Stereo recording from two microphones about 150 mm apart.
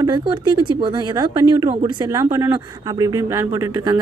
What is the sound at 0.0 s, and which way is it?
Speech, 30° right (ahead or behind).